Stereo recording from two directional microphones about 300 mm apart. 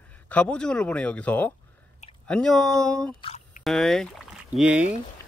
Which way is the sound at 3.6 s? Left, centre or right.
Centre.